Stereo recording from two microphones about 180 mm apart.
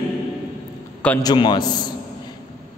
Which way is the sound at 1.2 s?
25° left (ahead or behind).